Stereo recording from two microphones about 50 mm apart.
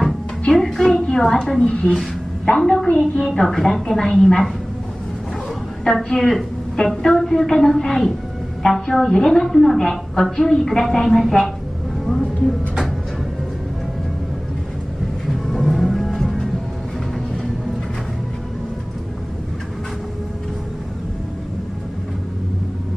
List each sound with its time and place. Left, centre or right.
0.0 s a woman's voice: centre
5.9 s a woman's voice: centre
12.1 s a sound: centre
15.2 s music: centre